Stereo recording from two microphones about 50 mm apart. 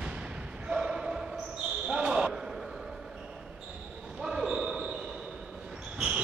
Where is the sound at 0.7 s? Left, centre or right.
Centre.